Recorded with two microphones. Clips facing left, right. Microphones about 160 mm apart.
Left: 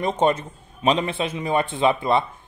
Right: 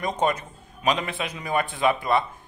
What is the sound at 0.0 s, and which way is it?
A man's voice, 30° left (ahead or behind).